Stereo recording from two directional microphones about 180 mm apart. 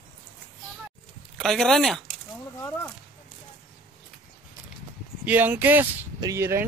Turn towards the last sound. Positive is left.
turn(degrees=-15)  # may be behind; listen again after turning